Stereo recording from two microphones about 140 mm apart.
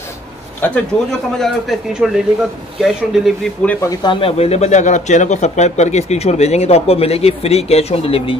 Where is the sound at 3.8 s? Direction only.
35° left (ahead or behind).